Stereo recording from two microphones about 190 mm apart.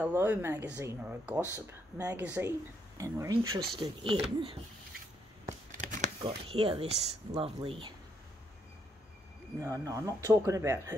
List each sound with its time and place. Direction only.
0.0 s speech: 10° right (ahead or behind); by 4.6 s 30° right (ahead or behind)
5.5 s scissors: 40° right (ahead or behind)
6.2 s speech: 30° right (ahead or behind)
9.6 s speech: 15° right (ahead or behind)